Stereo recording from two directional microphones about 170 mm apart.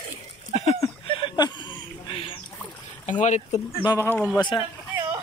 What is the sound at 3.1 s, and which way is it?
Speech, 45° left (ahead or behind).